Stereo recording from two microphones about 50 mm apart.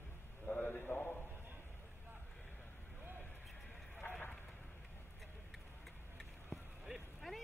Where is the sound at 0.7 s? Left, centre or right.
Left.